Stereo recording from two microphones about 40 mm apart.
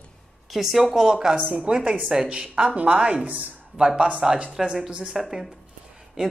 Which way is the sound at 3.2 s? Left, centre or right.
Right.